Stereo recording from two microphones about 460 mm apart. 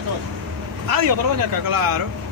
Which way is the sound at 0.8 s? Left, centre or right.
Right.